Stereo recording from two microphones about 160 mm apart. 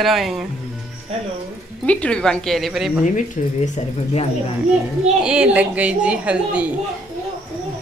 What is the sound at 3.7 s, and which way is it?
Speech, 40° left (ahead or behind).